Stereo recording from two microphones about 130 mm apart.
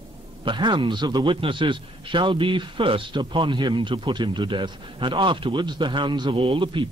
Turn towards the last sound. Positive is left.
turn(degrees=-40)  # may be behind; listen again after turning